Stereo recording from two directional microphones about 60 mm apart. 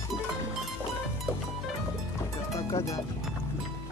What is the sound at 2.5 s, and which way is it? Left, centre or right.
Music, left.